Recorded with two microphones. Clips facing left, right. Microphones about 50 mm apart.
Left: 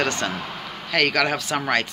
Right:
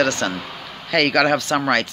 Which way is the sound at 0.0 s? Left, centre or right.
Centre.